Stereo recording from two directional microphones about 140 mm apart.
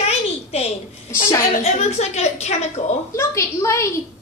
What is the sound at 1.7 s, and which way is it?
A woman's voice, 50° left (ahead or behind).